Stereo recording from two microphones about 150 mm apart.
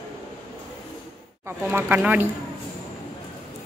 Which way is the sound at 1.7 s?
15° right (ahead or behind).